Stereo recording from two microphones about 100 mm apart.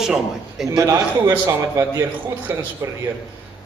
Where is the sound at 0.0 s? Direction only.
5° right (ahead or behind).